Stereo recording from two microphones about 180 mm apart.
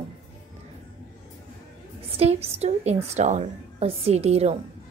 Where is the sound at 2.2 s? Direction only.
35° right (ahead or behind).